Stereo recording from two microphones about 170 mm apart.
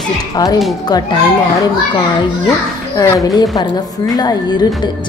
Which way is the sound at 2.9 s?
20° left (ahead or behind).